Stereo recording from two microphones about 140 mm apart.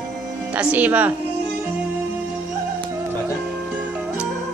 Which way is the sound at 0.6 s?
10° right (ahead or behind).